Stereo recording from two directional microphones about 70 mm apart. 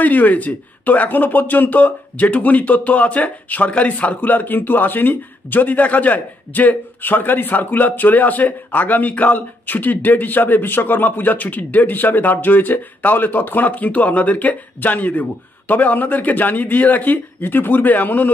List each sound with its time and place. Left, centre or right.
0.0 s speech: left